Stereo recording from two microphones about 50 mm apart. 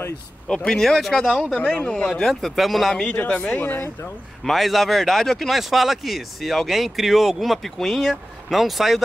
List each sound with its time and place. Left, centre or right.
0.5 s speech: centre
1.5 s speech: left
2.0 s speech: centre
2.5 s speech: centre
3.2 s speech: left
3.5 s speech: left
4.5 s speech: centre
5.5 s speech: centre